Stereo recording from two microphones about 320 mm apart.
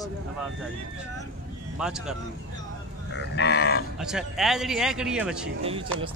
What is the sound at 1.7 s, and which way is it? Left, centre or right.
Speech, centre.